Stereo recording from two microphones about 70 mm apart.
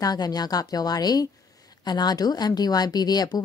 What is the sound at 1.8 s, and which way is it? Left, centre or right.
Speech, left.